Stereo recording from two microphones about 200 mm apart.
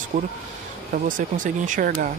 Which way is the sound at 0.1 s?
40° right (ahead or behind).